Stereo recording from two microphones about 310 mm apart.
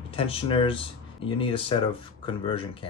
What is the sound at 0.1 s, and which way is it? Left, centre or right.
Speech, centre.